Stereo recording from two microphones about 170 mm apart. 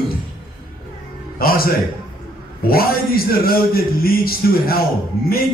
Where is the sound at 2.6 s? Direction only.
60° left (ahead or behind).